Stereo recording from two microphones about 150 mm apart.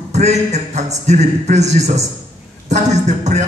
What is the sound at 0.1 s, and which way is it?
A man's voice, 50° right (ahead or behind).